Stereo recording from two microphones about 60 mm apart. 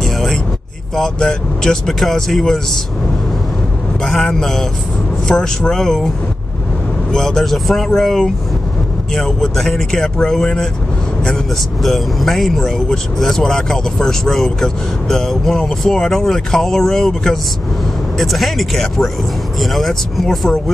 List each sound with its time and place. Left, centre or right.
0.0 s a sound: centre
0.9 s speech: centre
4.0 s speech: centre
7.1 s speech: centre
11.8 s speech: centre